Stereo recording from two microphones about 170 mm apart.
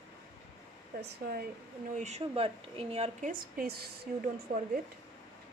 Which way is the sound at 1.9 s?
40° right (ahead or behind).